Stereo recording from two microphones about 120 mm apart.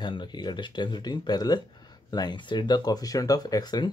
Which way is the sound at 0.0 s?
40° left (ahead or behind).